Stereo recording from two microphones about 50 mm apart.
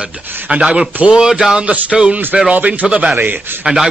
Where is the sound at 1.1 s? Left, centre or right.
Centre.